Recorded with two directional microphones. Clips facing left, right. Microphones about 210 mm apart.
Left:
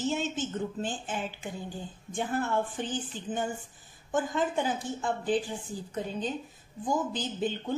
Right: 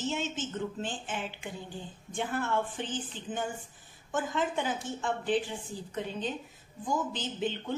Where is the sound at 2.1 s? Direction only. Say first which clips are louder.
Left 2 dB; 40° left (ahead or behind).